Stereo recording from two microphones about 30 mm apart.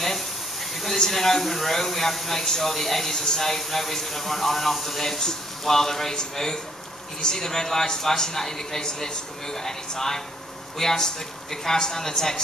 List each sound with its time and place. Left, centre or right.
0.9 s speech: centre